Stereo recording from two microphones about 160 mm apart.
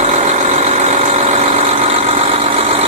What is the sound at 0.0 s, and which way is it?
Vehicle, 45° right (ahead or behind).